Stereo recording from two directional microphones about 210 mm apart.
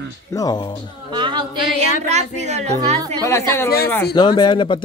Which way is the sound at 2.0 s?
35° right (ahead or behind).